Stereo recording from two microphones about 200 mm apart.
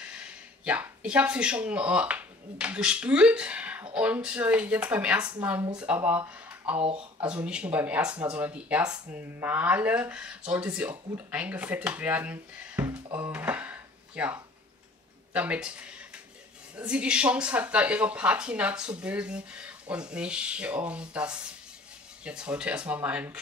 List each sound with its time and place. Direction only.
0.0 s speech: 5° right (ahead or behind)
6.8 s speech: 30° right (ahead or behind)
7.2 s speech: 5° right (ahead or behind)